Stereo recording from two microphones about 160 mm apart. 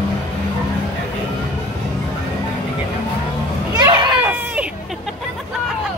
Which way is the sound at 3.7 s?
30° right (ahead or behind).